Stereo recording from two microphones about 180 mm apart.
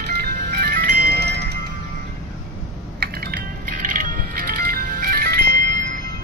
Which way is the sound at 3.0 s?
60° right (ahead or behind).